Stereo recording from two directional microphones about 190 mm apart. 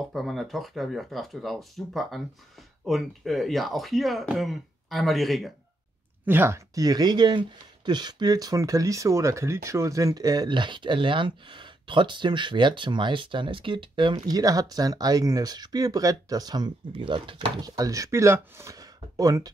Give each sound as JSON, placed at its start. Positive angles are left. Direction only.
{"t": 0.0, "sound": "speech", "side_deg": 0}
{"t": 6.2, "sound": "speech", "side_deg": -10}